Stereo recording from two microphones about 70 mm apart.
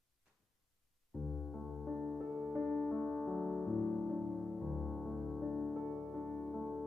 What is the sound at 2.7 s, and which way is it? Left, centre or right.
Music, centre.